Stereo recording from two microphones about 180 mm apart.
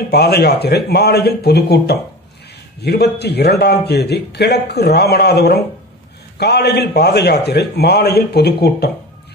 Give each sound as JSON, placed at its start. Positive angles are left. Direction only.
{"t": 0.1, "sound": "a man's voice", "side_deg": 65}